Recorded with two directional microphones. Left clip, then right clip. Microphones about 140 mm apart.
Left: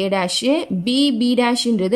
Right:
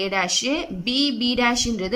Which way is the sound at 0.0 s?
30° left (ahead or behind).